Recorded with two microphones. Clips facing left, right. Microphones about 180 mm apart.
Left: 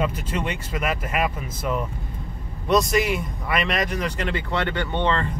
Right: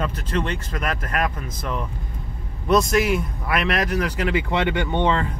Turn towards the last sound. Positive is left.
turn(degrees=-10)  # may be behind; listen again after turning